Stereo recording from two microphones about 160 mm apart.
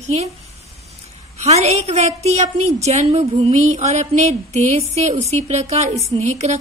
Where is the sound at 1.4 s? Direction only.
40° right (ahead or behind).